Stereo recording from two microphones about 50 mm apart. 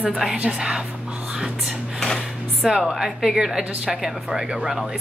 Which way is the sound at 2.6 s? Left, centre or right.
Centre.